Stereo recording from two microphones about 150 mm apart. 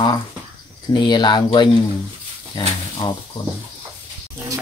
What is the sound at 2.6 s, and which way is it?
Speech, 30° left (ahead or behind).